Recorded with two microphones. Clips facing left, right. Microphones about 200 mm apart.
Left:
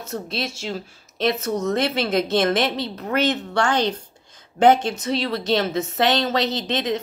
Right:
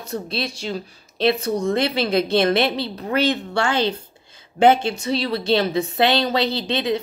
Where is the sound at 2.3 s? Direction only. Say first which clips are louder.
Right 2 dB; 30° right (ahead or behind).